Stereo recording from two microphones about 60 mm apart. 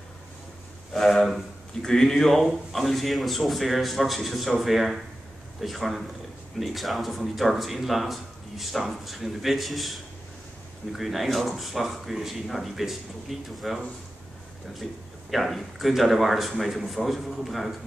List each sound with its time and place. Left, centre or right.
0.9 s speech: centre
15.3 s speech: centre